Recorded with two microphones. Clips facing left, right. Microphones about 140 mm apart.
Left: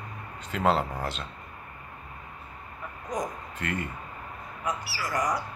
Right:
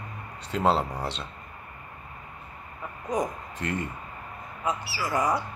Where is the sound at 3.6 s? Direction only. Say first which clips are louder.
Right 2 dB; 90° left.